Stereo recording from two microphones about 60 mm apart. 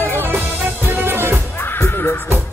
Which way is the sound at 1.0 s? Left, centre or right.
Right.